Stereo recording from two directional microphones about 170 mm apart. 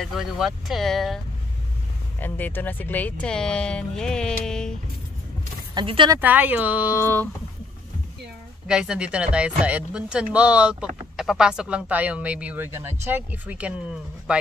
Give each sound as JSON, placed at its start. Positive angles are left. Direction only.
{"t": 0.0, "sound": "speech", "side_deg": 0}
{"t": 5.8, "sound": "speech", "side_deg": -30}
{"t": 6.1, "sound": "speech", "side_deg": -10}
{"t": 8.6, "sound": "speech", "side_deg": -5}